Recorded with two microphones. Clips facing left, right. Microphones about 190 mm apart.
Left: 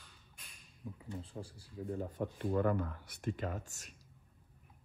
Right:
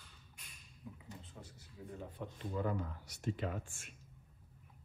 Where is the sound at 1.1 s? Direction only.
30° left (ahead or behind).